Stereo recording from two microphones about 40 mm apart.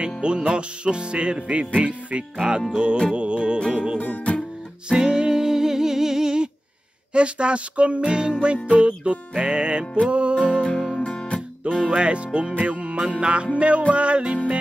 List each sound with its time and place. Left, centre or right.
0.0 s music: right
4.0 s music: left
4.8 s music: centre
10.6 s music: centre
11.0 s guitar: left
11.9 s music: right